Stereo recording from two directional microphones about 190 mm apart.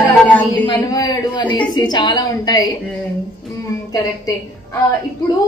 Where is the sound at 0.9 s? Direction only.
20° left (ahead or behind).